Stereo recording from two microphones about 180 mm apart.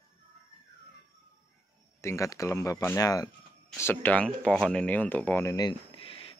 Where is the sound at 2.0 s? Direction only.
15° left (ahead or behind).